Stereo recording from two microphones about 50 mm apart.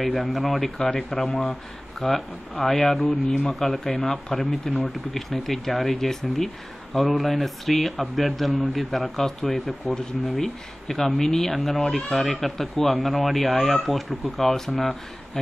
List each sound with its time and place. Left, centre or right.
0.3 s speech: centre
3.4 s speech: centre